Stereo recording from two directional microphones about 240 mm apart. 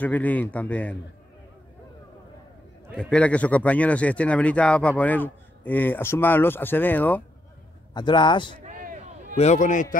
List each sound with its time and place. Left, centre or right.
0.0 s a man's voice: centre
2.9 s a man's voice: centre
7.9 s a man's voice: centre
8.6 s a sound: right
9.4 s a man's voice: left